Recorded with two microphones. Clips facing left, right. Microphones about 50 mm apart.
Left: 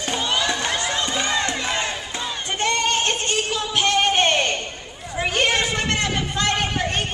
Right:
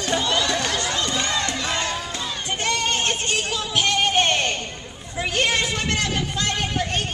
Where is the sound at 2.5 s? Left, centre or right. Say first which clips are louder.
Left 3 dB; left.